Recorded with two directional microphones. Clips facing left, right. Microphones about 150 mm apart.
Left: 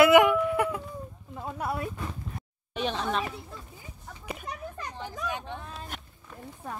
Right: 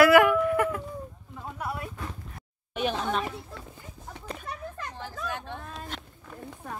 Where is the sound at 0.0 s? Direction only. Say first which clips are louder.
Even; 20° left (ahead or behind).